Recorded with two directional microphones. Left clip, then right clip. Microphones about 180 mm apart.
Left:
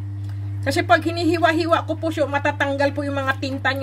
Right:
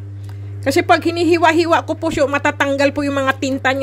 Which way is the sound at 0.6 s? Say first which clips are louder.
Right 4 dB; 45° right (ahead or behind).